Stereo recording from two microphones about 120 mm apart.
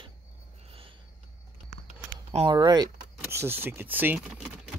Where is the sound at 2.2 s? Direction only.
50° right (ahead or behind).